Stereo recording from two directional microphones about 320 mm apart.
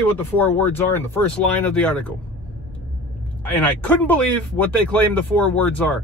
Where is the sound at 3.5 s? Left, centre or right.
Centre.